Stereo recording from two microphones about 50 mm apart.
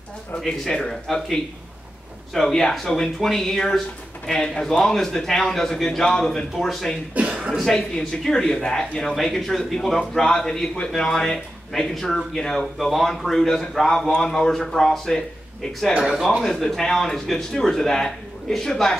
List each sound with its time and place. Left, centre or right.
0.5 s speech: centre
7.2 s speech: right
7.7 s speech: centre
15.9 s speech: centre
16.4 s speech: centre